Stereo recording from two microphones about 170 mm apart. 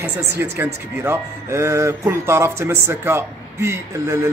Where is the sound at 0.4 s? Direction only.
15° right (ahead or behind).